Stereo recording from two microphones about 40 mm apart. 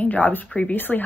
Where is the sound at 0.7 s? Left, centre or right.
Left.